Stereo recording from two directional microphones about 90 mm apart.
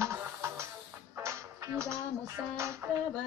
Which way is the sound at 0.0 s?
30° right (ahead or behind).